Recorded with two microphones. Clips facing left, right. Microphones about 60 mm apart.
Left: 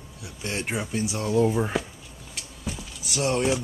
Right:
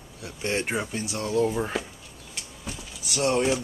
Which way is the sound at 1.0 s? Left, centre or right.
Centre.